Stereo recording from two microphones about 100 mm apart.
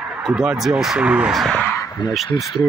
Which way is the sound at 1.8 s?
40° left (ahead or behind).